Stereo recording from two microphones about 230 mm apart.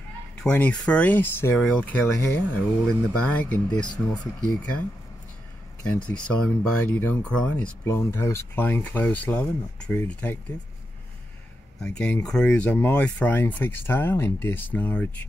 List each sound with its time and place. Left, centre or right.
0.4 s speech: centre
3.8 s speech: centre
4.4 s speech: centre
6.0 s speech: centre
11.8 s speech: centre